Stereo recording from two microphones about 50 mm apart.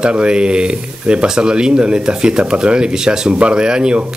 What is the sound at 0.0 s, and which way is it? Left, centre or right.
Speech, centre.